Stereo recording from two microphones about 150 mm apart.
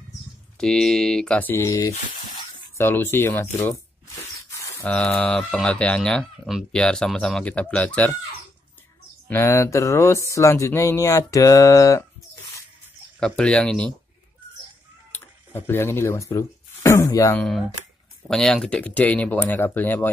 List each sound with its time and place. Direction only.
0.6 s speech: 5° left (ahead or behind)
9.3 s speech: 20° left (ahead or behind)
13.2 s speech: 5° left (ahead or behind)
15.1 s speech: 15° left (ahead or behind)
17.4 s speech: centre (ahead or behind)